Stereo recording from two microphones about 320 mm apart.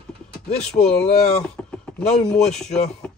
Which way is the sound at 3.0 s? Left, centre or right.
Centre.